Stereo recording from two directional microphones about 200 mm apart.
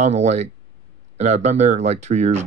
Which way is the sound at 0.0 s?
35° right (ahead or behind).